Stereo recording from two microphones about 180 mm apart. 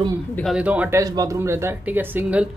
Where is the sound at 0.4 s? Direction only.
5° right (ahead or behind).